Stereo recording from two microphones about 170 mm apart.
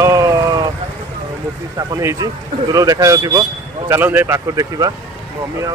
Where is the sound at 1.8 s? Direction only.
20° right (ahead or behind).